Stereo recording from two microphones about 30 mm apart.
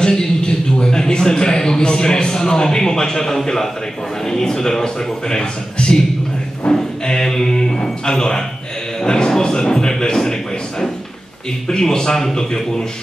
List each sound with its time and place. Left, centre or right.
0.0 s a sound: centre
0.5 s a man's voice: left
6.7 s music: centre
9.0 s a man's voice: left
11.7 s a man's voice: left